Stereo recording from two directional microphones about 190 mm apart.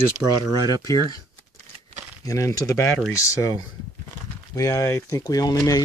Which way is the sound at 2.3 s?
15° left (ahead or behind).